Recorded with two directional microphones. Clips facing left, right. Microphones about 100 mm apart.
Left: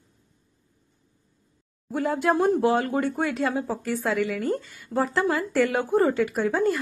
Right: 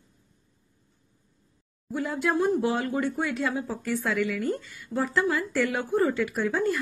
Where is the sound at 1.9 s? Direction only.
45° left (ahead or behind).